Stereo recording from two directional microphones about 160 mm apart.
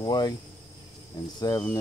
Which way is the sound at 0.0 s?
25° left (ahead or behind).